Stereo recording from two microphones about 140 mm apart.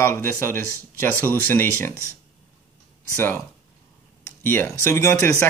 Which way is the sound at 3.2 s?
15° left (ahead or behind).